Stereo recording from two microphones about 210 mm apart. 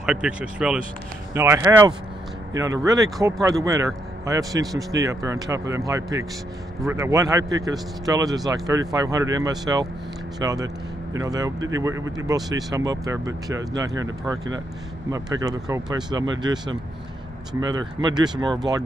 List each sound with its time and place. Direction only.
0.0 s a man's voice: 5° right (ahead or behind)
18.1 s speech: 20° right (ahead or behind)